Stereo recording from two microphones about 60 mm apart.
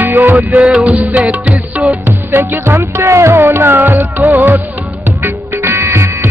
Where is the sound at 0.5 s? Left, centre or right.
Centre.